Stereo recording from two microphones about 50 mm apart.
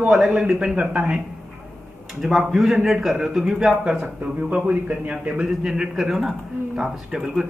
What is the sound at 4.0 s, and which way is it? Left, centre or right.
A man's voice, right.